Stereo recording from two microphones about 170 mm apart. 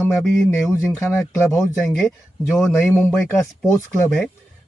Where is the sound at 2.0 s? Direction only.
5° right (ahead or behind).